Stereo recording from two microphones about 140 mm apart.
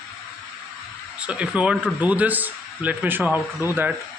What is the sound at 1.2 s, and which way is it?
A man's voice, 10° right (ahead or behind).